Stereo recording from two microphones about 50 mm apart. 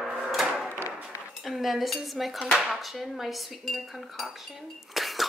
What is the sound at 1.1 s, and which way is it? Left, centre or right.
Cutlery, left.